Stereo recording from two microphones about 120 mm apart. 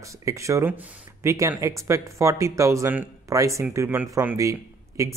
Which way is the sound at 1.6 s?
25° right (ahead or behind).